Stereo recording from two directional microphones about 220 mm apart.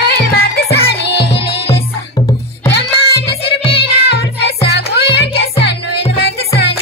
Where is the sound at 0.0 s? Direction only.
45° left (ahead or behind).